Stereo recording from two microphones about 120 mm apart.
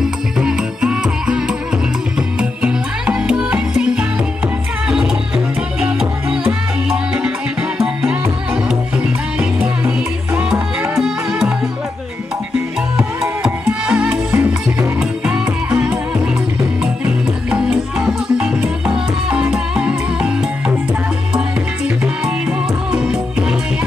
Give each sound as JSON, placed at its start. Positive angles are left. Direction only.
{"t": 0.0, "sound": "music", "side_deg": -5}
{"t": 7.8, "sound": "music", "side_deg": -5}
{"t": 12.9, "sound": "music", "side_deg": -5}
{"t": 14.3, "sound": "music", "side_deg": -20}
{"t": 15.0, "sound": "music", "side_deg": -5}
{"t": 21.8, "sound": "music", "side_deg": -5}